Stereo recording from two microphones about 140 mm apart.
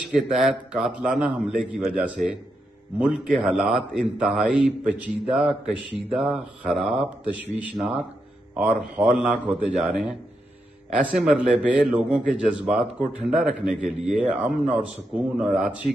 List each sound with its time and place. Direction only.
0.4 s a man's voice: 5° right (ahead or behind)
3.4 s a man's voice: 5° right (ahead or behind)